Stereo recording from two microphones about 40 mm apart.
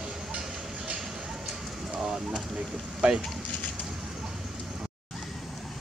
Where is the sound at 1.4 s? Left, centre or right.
Centre.